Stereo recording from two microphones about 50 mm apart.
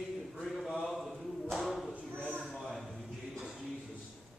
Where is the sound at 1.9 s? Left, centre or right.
Left.